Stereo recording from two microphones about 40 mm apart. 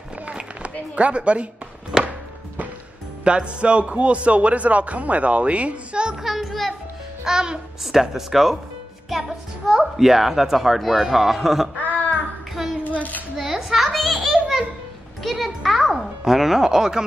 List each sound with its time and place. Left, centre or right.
0.2 s run: right
0.9 s a man's voice: right
1.9 s music: centre
3.3 s a man's voice: right
6.2 s music: centre
7.2 s music: centre
7.8 s speech: centre
9.7 s a child's voice: centre
11.8 s a sound: left
12.6 s child singing: centre
13.4 s a sound: centre
15.2 s a child's voice: centre